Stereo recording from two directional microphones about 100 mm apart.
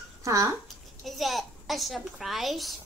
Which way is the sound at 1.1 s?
Centre (ahead or behind).